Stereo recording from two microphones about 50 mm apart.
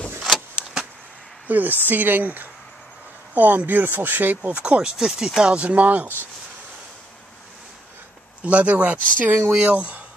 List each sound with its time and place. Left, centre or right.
1.5 s speech: right
4.5 s speech: right
8.4 s speech: right